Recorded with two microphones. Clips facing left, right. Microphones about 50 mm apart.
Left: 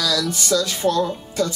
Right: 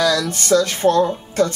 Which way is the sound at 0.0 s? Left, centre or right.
Right.